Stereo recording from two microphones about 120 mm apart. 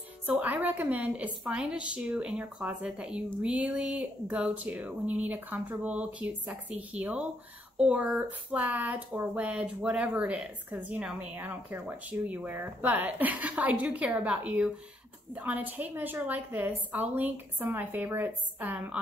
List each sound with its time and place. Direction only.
0.3 s speech: 15° right (ahead or behind)